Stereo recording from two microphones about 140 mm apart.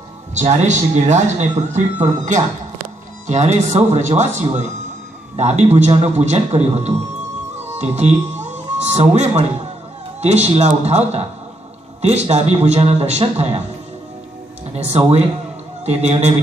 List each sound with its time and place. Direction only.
0.3 s a man's voice: 55° right (ahead or behind)
14.7 s a man's voice: 50° right (ahead or behind)